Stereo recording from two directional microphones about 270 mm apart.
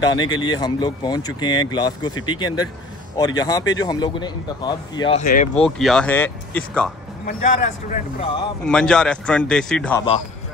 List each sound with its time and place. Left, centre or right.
0.0 s speech: centre
5.2 s speech: left
5.8 s speech: centre
7.2 s speech: left
8.6 s speech: centre